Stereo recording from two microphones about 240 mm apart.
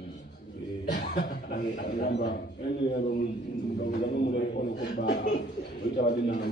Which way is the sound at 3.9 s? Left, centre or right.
Left.